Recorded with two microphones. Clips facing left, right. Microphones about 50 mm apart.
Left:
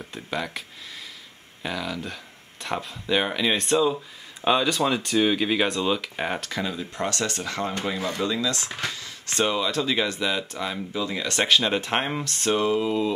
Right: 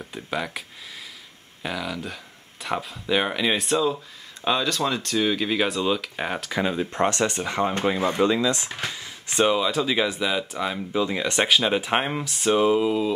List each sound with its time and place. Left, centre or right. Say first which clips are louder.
0.0 s speech: right 1 dB; centre
6.6 s speech: right 9 dB; right; by 13.1 s centre